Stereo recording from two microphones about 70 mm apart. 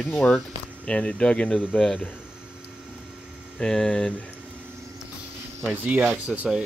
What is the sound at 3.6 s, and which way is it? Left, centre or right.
Speech, centre.